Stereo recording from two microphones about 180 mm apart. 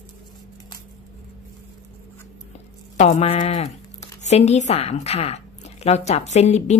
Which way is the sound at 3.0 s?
40° left (ahead or behind).